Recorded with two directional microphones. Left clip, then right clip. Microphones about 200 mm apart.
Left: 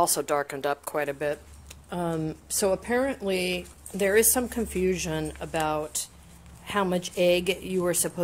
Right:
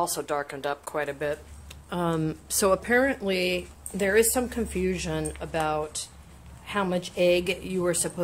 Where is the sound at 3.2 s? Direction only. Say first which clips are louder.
Right 1 dB; 30° left (ahead or behind).